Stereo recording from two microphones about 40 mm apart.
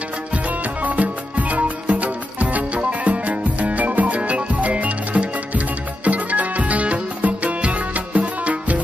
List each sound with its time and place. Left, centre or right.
0.8 s music: right